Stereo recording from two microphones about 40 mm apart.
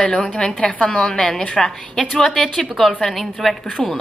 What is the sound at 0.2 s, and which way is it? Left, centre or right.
A woman's voice, centre.